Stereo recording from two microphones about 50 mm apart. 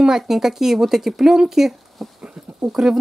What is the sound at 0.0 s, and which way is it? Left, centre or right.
Speech, centre.